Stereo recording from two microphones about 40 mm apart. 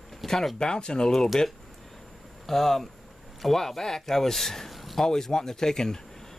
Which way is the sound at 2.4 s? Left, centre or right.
Centre.